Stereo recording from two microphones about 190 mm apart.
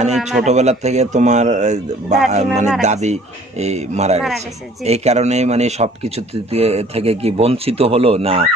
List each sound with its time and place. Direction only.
0.5 s speech: 35° right (ahead or behind)